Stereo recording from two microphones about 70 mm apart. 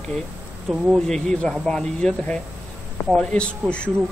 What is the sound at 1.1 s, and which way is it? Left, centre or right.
Speech, centre.